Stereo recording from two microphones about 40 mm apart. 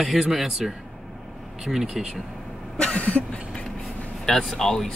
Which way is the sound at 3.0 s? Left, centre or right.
Left.